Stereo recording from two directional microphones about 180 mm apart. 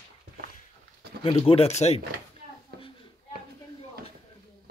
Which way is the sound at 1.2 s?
30° left (ahead or behind).